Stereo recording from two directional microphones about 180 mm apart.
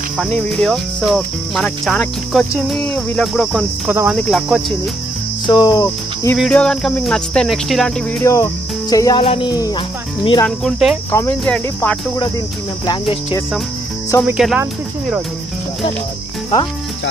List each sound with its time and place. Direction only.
0.5 s cricket: centre (ahead or behind)
5.5 s speech: 20° left (ahead or behind)
6.3 s cricket: centre (ahead or behind)
8.2 s cricket: 15° left (ahead or behind)
8.9 s speech: 20° left (ahead or behind)
9.2 s speech: 30° left (ahead or behind)
10.4 s cricket: centre (ahead or behind)
11.1 s cricket: 15° left (ahead or behind)
12.8 s speech: 30° left (ahead or behind)
14.2 s cricket: 5° right (ahead or behind)